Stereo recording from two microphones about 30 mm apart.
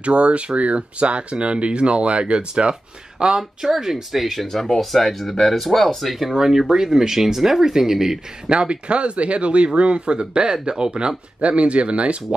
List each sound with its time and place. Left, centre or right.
0.0 s speech: right
3.8 s speech: centre
4.5 s speech: centre
6.3 s speech: centre
8.5 s speech: right
11.4 s speech: right